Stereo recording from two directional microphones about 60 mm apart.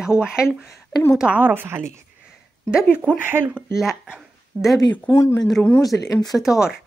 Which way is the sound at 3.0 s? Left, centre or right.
Right.